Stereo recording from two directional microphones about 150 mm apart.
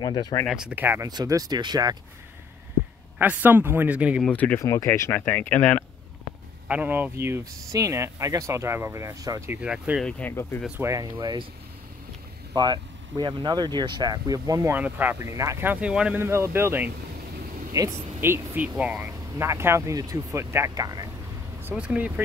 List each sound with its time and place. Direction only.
0.0 s speech: 30° left (ahead or behind)
0.5 s speech: 5° right (ahead or behind); by 2.0 s 25° right (ahead or behind)
3.2 s speech: 10° right (ahead or behind)
4.2 s speech: 10° left (ahead or behind)
6.7 s speech: 10° right (ahead or behind)
9.6 s speech: 5° right (ahead or behind)
10.0 s speech: 10° left (ahead or behind)
10.8 s speech: 20° right (ahead or behind)
11.1 s speech: 30° right (ahead or behind)
12.5 s speech: 30° right (ahead or behind)
21.6 s speech: 10° right (ahead or behind)